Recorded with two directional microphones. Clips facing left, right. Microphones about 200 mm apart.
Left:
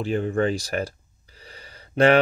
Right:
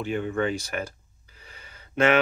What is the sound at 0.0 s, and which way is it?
Speech, 35° left (ahead or behind).